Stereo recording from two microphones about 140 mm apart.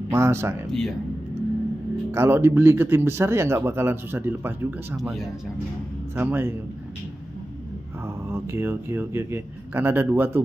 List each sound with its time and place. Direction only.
0.1 s speech: 20° right (ahead or behind)
0.7 s speech: 5° left (ahead or behind)
2.1 s speech: 15° right (ahead or behind)
4.9 s speech: centre (ahead or behind)
6.1 s speech: 15° right (ahead or behind)
8.3 s speech: 15° right (ahead or behind)